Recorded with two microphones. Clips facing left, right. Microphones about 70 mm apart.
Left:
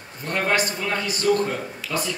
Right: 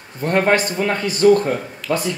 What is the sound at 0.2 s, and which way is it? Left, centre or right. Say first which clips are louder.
Speech: right 6 dB; right.